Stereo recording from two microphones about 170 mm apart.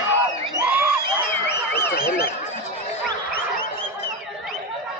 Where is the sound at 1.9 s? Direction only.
65° left (ahead or behind).